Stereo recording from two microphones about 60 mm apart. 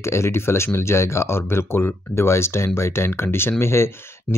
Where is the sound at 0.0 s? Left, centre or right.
Left.